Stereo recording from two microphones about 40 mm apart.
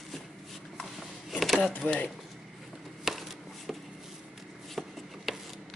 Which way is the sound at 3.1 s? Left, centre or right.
Centre.